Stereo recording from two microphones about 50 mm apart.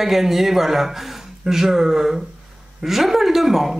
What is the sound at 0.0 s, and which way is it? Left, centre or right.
Speech, centre.